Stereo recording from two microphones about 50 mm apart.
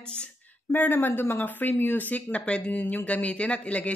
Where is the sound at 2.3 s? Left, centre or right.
Left.